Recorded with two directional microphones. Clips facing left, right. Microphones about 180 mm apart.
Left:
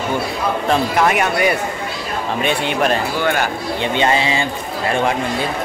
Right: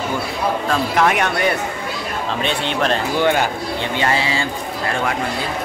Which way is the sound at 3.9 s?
20° left (ahead or behind).